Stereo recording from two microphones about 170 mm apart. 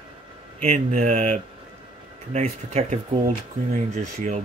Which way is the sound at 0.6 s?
40° right (ahead or behind).